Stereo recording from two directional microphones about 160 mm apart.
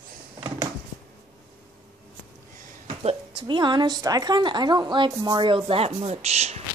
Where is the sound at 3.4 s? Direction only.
30° right (ahead or behind).